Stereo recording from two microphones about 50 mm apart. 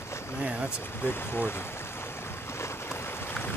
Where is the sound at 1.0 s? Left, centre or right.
Left.